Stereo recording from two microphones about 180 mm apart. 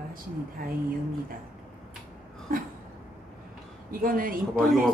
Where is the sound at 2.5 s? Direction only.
50° right (ahead or behind).